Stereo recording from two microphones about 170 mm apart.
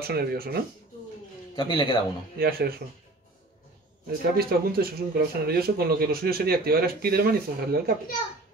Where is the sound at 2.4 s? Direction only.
60° right (ahead or behind).